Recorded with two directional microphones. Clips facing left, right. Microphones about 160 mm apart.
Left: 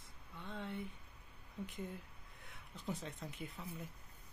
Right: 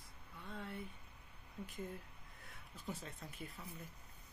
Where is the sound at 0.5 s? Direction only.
25° left (ahead or behind).